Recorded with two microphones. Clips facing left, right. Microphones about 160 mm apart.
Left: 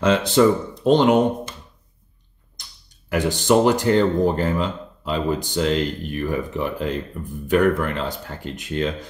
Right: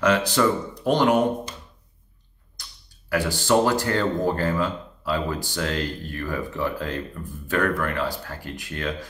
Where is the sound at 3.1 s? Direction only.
20° left (ahead or behind).